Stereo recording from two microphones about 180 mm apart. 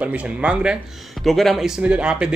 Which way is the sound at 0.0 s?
5° right (ahead or behind).